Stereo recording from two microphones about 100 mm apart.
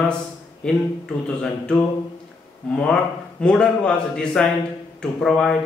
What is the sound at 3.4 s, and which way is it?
A man's voice, 10° left (ahead or behind).